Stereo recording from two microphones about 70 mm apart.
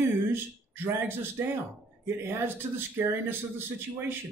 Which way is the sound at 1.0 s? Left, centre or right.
Right.